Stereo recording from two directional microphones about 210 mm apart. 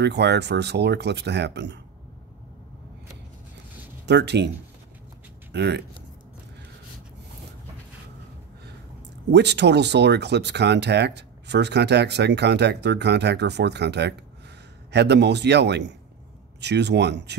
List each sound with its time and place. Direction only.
0.0 s speech: 55° right (ahead or behind)
4.0 s speech: 55° right (ahead or behind)
5.5 s speech: 55° right (ahead or behind)
9.3 s speech: 55° right (ahead or behind)